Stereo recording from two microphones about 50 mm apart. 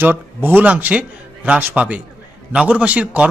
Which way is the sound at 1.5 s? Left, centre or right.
Right.